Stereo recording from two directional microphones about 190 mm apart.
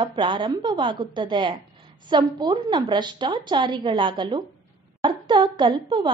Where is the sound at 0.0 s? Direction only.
25° right (ahead or behind).